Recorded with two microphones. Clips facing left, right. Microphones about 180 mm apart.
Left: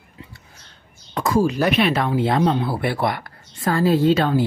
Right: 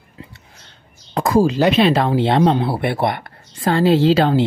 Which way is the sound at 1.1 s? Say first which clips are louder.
Right 4 dB; 35° right (ahead or behind).